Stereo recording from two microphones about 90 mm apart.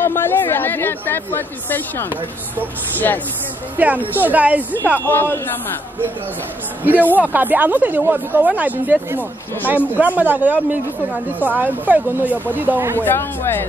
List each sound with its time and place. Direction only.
0.0 s a woman's voice: 25° left (ahead or behind)
3.7 s a woman's voice: 20° right (ahead or behind)
5.0 s a woman's voice: 25° left (ahead or behind)
6.8 s speech: 20° right (ahead or behind)
12.9 s a woman's voice: 25° left (ahead or behind)